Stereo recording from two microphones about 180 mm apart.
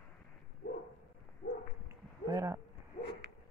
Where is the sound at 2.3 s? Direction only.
15° right (ahead or behind).